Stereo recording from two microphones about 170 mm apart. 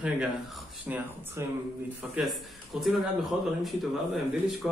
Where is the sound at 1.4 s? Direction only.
15° right (ahead or behind).